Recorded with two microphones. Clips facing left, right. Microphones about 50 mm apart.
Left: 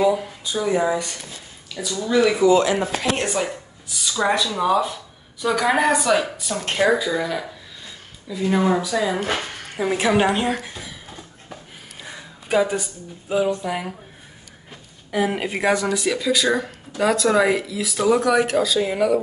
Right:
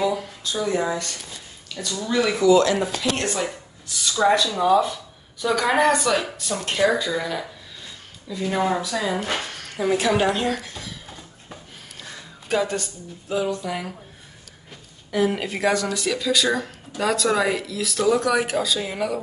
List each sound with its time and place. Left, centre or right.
0.0 s speech: centre
1.7 s a woman's voice: centre
2.4 s speech: left; by 9.2 s centre
9.3 s speech: centre